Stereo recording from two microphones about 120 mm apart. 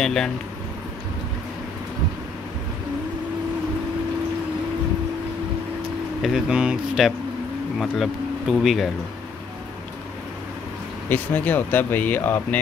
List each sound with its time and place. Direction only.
0.0 s speech: 5° left (ahead or behind)
6.2 s speech: 5° right (ahead or behind)
11.1 s speech: 15° left (ahead or behind)